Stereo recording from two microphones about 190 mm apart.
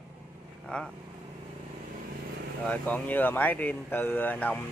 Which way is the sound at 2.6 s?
10° left (ahead or behind).